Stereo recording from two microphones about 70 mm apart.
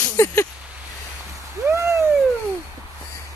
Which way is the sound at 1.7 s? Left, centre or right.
Right.